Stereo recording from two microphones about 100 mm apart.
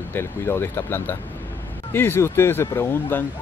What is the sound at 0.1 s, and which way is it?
Speech, 25° left (ahead or behind).